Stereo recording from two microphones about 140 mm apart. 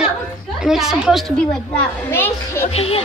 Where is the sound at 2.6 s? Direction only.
45° left (ahead or behind).